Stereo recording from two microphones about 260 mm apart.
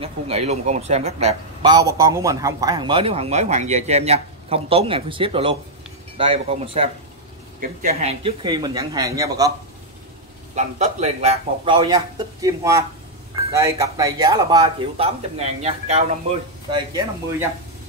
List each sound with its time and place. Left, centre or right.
0.0 s a man's voice: right
10.5 s a man's voice: right